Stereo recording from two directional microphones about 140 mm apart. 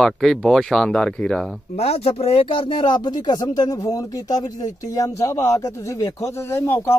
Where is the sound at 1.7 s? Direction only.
50° left (ahead or behind).